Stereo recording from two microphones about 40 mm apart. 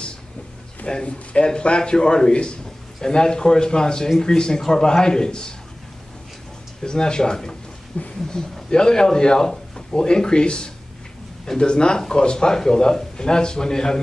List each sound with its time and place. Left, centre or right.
0.8 s a man's voice: left
6.8 s a man's voice: centre
8.0 s speech: left
8.3 s a man's voice: centre